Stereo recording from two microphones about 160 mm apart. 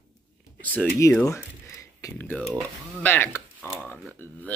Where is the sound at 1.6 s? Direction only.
20° left (ahead or behind).